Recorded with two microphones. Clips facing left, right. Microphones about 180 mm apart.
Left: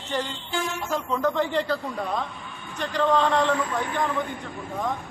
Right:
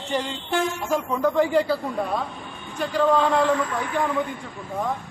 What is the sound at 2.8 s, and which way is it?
Speech, 10° right (ahead or behind).